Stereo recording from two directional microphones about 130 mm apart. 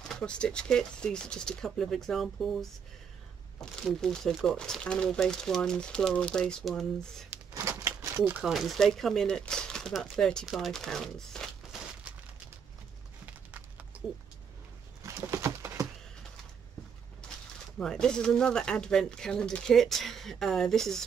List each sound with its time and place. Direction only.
0.1 s speech: 5° left (ahead or behind)
3.8 s speech: 5° left (ahead or behind)
7.2 s a sound: 25° right (ahead or behind)
8.3 s speech: 5° right (ahead or behind)
15.0 s a sound: 25° right (ahead or behind)
17.7 s speech: 5° left (ahead or behind)